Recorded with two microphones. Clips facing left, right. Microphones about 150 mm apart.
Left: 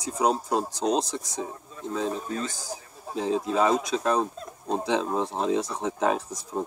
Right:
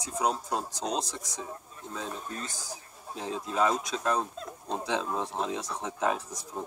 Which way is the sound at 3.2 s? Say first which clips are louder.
Left 5 dB; 25° left (ahead or behind).